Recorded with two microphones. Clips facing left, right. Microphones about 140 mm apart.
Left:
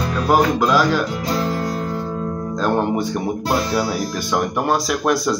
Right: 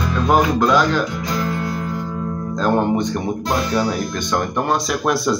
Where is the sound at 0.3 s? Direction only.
5° left (ahead or behind).